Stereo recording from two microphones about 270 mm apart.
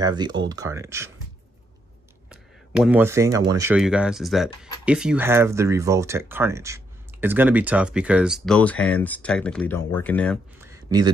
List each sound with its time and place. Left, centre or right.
0.0 s speech: centre
2.2 s speech: centre
10.6 s a sound: centre